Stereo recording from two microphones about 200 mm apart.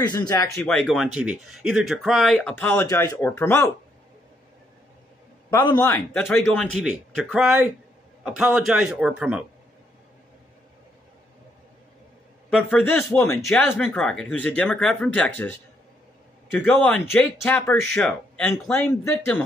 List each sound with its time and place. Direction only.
0.0 s speech: 20° left (ahead or behind)
0.6 s speech: 5° left (ahead or behind)
5.5 s speech: 10° left (ahead or behind)
6.6 s speech: centre (ahead or behind)
12.4 s speech: 5° left (ahead or behind)
16.5 s speech: 10° left (ahead or behind)